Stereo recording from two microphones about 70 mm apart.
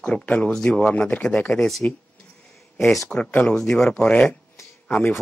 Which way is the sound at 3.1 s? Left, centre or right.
Centre.